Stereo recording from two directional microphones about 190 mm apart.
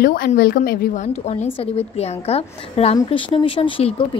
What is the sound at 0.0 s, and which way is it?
Speech, 50° left (ahead or behind).